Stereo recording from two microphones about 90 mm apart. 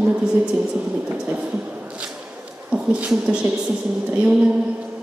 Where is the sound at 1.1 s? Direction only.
15° right (ahead or behind).